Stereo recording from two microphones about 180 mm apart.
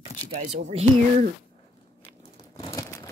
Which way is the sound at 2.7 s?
20° left (ahead or behind).